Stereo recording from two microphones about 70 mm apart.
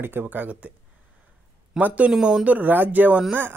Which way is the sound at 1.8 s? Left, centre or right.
Right.